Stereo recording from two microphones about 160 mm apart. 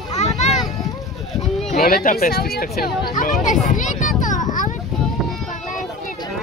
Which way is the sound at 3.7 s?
55° left (ahead or behind).